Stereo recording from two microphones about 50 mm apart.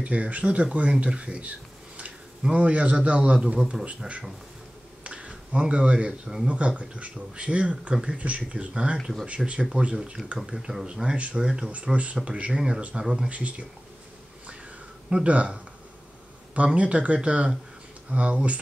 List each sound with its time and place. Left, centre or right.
0.0 s speech: right
2.5 s speech: right
5.0 s speech: right
7.9 s speech: centre
8.2 s speech: right
13.3 s speech: right
15.0 s speech: right